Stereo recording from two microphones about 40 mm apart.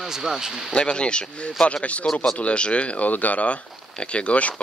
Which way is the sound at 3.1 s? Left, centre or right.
Left.